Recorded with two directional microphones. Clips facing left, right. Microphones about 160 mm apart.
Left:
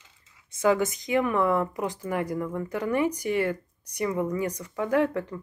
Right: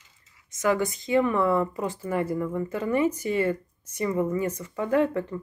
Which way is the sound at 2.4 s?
5° right (ahead or behind).